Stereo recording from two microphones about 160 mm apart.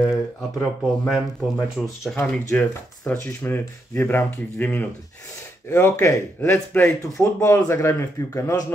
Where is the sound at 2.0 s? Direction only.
5° left (ahead or behind).